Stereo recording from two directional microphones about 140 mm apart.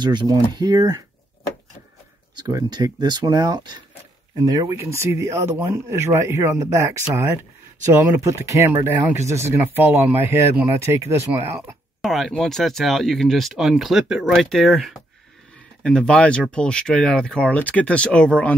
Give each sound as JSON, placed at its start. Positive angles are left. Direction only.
{"t": 0.0, "sound": "speech", "side_deg": -35}
{"t": 2.3, "sound": "speech", "side_deg": -30}
{"t": 12.0, "sound": "speech", "side_deg": 0}